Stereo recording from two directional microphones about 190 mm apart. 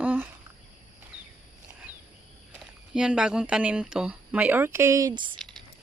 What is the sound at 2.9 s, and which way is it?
Speech, 5° right (ahead or behind).